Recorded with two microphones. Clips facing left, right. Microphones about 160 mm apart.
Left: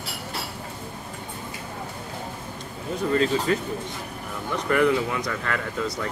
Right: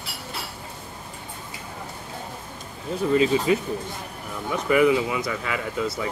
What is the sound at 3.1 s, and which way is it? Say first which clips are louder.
Speech: right 3 dB; 5° right (ahead or behind).